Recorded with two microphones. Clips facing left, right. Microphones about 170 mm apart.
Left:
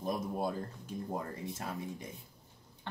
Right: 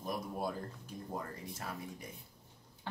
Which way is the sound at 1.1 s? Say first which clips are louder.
Left 2 dB; 25° left (ahead or behind).